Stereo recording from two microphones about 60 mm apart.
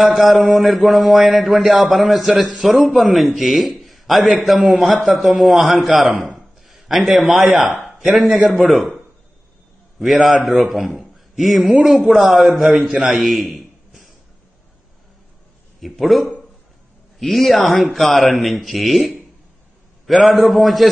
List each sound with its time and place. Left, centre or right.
0.0 s mantra: centre
6.3 s a sound: centre
7.2 s mantra: centre
7.7 s speech: centre
8.5 s mantra: centre
10.2 s a man's voice: centre
15.8 s mantra: centre